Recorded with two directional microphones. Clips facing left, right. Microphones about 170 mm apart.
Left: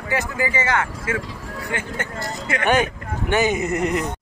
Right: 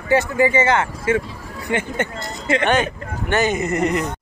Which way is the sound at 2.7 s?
10° left (ahead or behind).